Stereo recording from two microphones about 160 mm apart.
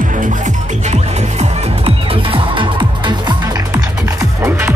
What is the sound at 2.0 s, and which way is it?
Music, 35° right (ahead or behind).